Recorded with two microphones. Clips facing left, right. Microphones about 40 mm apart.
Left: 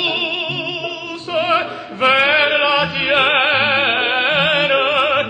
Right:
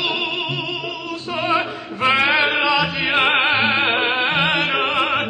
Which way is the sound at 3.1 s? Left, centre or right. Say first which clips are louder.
Left 2 dB; centre.